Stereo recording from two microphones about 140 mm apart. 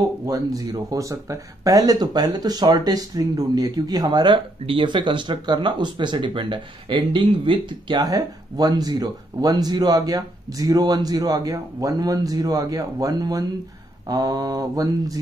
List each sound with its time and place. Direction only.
0.3 s speech: 25° right (ahead or behind)